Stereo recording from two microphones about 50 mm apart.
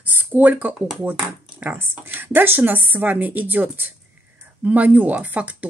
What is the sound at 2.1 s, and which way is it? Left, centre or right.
A woman's voice, right.